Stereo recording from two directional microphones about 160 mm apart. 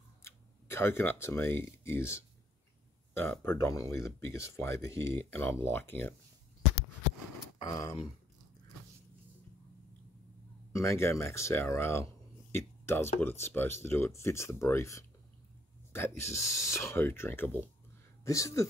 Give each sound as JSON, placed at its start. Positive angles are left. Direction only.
{"t": 0.2, "sound": "speech", "side_deg": 15}
{"t": 3.4, "sound": "speech", "side_deg": 20}
{"t": 7.5, "sound": "a sound", "side_deg": 25}
{"t": 10.7, "sound": "speech", "side_deg": 15}